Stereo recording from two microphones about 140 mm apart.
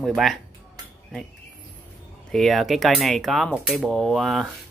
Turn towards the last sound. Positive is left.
turn(degrees=0)  # may be behind; listen again after turning